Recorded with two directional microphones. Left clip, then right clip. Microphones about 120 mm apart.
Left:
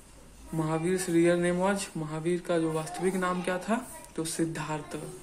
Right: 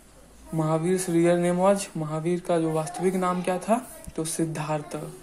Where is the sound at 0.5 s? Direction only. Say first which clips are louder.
Right 4 dB; 30° right (ahead or behind).